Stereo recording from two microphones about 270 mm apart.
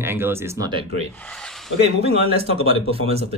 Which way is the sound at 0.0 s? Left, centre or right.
Centre.